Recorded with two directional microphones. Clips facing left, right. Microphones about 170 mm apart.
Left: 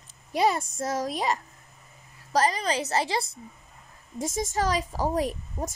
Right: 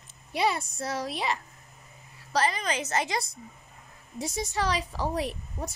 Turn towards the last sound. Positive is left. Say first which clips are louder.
# left 4 dB
turn(degrees=45)  # may be behind; listen again after turning